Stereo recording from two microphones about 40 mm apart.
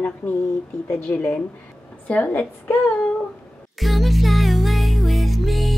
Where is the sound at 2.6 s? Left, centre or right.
Left.